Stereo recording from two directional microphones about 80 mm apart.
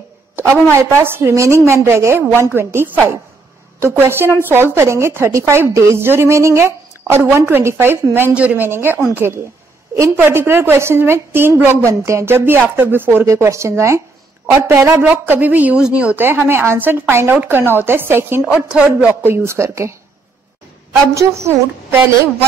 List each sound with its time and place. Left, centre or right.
0.4 s a woman's voice: right
8.4 s a woman's voice: centre
11.9 s a woman's voice: right
13.2 s a woman's voice: right; by 16.3 s centre
16.3 s a woman's voice: right
18.7 s speech: centre
19.2 s a woman's voice: right
21.1 s a woman's voice: right